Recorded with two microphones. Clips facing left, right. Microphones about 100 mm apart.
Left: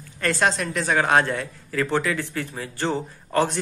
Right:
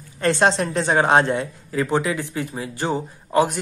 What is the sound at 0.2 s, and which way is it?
A woman's voice, 25° right (ahead or behind).